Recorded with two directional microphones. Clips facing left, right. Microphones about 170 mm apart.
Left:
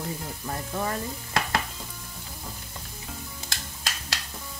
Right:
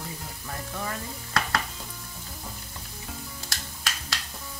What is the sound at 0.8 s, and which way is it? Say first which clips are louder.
Stir: left 4 dB; 25° left (ahead or behind).